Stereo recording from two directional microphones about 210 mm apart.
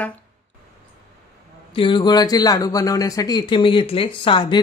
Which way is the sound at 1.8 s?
20° left (ahead or behind).